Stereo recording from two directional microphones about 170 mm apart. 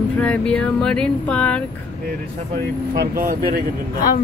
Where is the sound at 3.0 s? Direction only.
60° right (ahead or behind).